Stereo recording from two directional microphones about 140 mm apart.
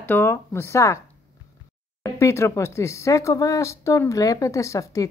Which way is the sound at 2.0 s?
20° left (ahead or behind).